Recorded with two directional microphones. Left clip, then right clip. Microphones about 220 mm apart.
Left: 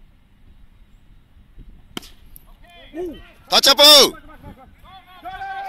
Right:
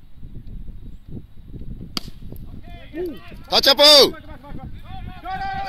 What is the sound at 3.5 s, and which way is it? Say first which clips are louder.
Speech: left 2 dB; centre (ahead or behind).